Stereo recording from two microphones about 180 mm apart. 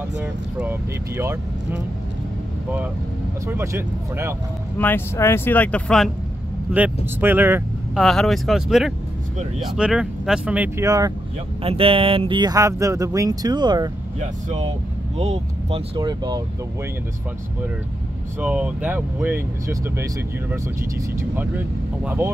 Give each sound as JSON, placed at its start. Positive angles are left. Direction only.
{"t": 0.2, "sound": "speech", "side_deg": -10}
{"t": 3.4, "sound": "speech", "side_deg": -10}
{"t": 4.7, "sound": "speech", "side_deg": 10}
{"t": 6.7, "sound": "speech", "side_deg": -10}
{"t": 8.0, "sound": "speech", "side_deg": 0}
{"t": 10.9, "sound": "speech", "side_deg": -20}
{"t": 11.6, "sound": "speech", "side_deg": -30}
{"t": 14.2, "sound": "speech", "side_deg": -40}
{"t": 16.0, "sound": "speech", "side_deg": -20}
{"t": 18.4, "sound": "speech", "side_deg": -5}